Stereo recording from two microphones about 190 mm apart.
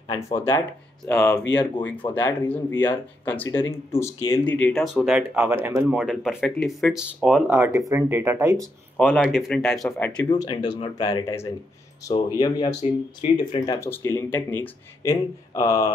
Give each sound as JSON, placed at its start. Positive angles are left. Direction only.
{"t": 0.1, "sound": "speech", "side_deg": 15}
{"t": 5.2, "sound": "speech", "side_deg": -15}
{"t": 8.9, "sound": "speech", "side_deg": 0}
{"t": 13.7, "sound": "speech", "side_deg": 10}